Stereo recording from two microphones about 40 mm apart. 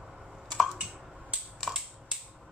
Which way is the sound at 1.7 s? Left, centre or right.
Centre.